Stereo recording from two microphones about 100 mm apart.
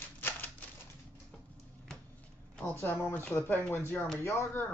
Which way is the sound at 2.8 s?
20° left (ahead or behind).